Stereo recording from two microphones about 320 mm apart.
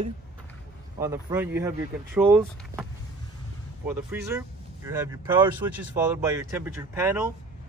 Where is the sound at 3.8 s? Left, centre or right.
Centre.